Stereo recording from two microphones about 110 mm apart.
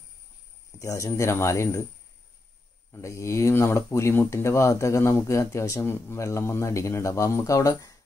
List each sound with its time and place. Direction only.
0.7 s speech: 30° left (ahead or behind)
2.9 s speech: 25° left (ahead or behind)